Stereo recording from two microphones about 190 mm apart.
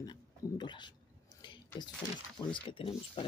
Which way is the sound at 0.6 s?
25° left (ahead or behind).